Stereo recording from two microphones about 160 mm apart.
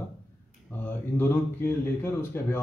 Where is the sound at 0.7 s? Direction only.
10° left (ahead or behind).